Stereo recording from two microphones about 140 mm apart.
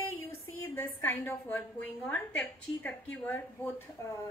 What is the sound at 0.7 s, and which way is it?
A woman's voice, 15° left (ahead or behind).